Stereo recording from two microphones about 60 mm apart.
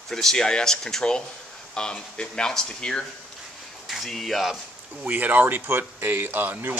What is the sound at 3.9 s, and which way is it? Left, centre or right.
Speech, centre.